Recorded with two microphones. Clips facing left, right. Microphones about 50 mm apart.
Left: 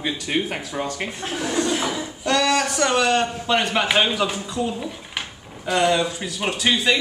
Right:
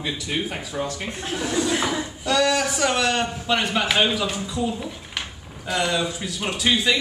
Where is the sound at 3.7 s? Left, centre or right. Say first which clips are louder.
Left 2 dB; left.